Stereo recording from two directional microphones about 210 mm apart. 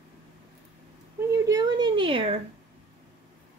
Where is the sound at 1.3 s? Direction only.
20° right (ahead or behind).